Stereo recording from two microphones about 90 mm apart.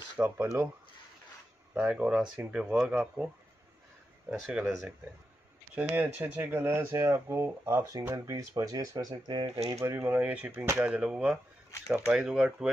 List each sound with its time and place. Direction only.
0.2 s speech: 20° right (ahead or behind)
1.7 s speech: 15° right (ahead or behind)
2.9 s speech: 20° right (ahead or behind)
4.5 s speech: 5° right (ahead or behind)
5.8 s speech: 15° right (ahead or behind); by 9.8 s 45° right (ahead or behind)
9.8 s speech: 30° right (ahead or behind)
10.9 s speech: 10° right (ahead or behind)